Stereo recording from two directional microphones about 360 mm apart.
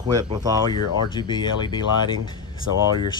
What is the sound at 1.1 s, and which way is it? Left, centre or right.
Speech, centre.